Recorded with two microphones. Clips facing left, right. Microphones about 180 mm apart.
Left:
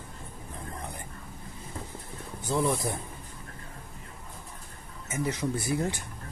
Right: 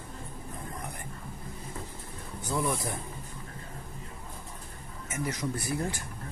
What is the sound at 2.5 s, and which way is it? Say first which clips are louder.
Speech: left 3 dB; 20° left (ahead or behind).